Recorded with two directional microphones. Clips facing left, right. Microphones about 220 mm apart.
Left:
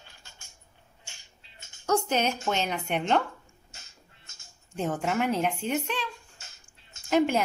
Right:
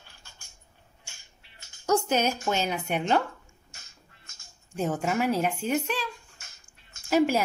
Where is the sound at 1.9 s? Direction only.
5° right (ahead or behind).